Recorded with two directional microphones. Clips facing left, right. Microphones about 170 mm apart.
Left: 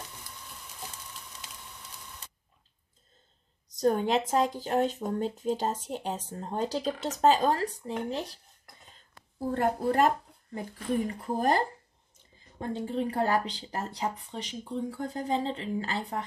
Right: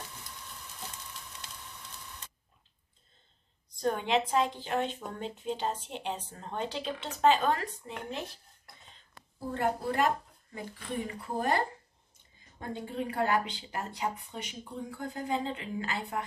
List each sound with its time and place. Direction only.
3.8 s a woman's voice: 40° left (ahead or behind)
9.5 s a woman's voice: 40° left (ahead or behind)